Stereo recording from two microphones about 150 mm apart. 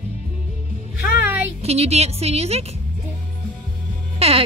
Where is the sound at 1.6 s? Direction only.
45° right (ahead or behind).